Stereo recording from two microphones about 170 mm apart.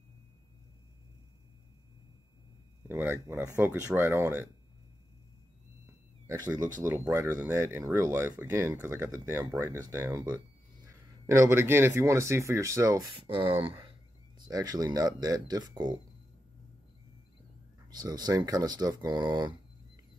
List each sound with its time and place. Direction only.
2.9 s speech: 15° right (ahead or behind)
6.8 s speech: 15° right (ahead or behind)
13.1 s speech: 30° right (ahead or behind)
17.8 s speech: 25° right (ahead or behind)